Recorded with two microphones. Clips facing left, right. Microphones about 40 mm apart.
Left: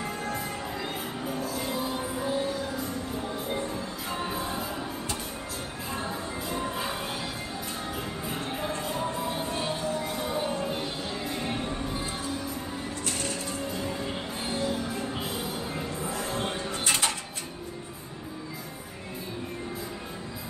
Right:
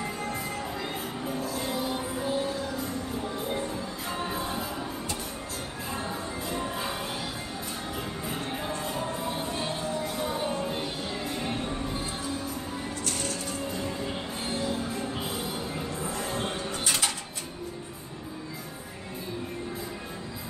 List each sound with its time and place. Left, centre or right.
2.0 s music: centre
3.7 s music: centre
5.9 s music: centre
8.3 s music: centre
9.8 s music: left
10.1 s music: centre
13.2 s music: centre
13.7 s music: centre